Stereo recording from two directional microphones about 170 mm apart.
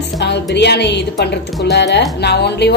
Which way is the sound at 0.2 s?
85° left.